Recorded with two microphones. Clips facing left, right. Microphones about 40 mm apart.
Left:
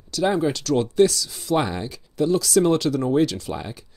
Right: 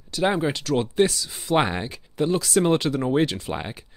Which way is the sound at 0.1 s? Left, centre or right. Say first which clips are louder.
Left 1 dB; right.